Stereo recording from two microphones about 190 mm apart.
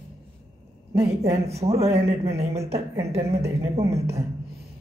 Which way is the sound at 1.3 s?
35° right (ahead or behind).